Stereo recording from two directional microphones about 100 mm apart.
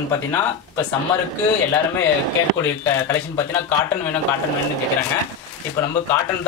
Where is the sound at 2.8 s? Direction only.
25° left (ahead or behind).